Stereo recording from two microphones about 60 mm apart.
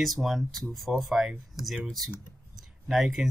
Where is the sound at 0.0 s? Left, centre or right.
Centre.